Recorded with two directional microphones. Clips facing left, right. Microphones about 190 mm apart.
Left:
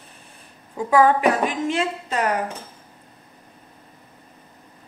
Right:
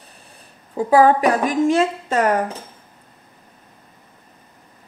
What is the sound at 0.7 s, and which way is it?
Speech, 35° right (ahead or behind).